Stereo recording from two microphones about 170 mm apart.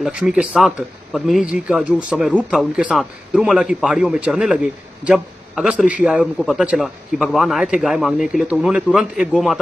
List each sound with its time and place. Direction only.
0.0 s a man's voice: 5° right (ahead or behind)